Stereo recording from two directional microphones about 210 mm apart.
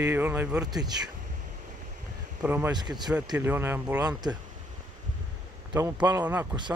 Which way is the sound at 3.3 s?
10° right (ahead or behind).